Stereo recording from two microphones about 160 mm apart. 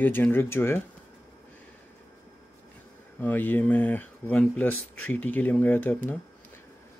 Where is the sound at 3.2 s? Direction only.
10° left (ahead or behind).